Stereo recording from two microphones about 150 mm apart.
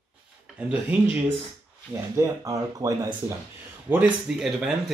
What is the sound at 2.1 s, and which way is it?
Speech, 20° right (ahead or behind).